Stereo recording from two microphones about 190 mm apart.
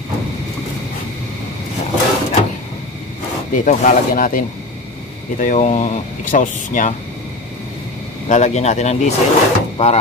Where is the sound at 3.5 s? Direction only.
40° left (ahead or behind).